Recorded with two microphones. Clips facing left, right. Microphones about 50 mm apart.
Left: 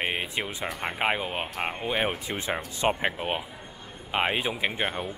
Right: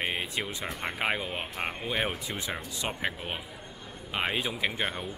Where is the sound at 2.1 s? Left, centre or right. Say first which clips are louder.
Left 4 dB; left.